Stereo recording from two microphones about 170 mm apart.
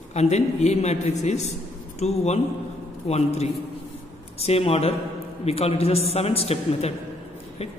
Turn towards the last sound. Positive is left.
turn(degrees=35)  # may be behind; listen again after turning